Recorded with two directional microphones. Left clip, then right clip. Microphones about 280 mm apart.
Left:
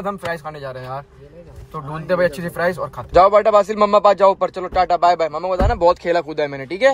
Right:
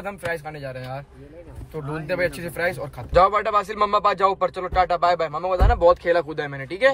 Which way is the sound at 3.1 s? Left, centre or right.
Centre.